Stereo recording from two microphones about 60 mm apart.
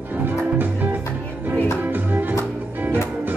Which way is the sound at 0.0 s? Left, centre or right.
Right.